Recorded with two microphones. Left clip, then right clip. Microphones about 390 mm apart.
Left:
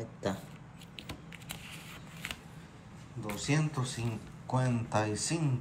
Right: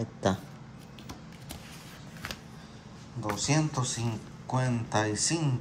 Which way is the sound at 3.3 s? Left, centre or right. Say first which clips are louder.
Right 5 dB; centre.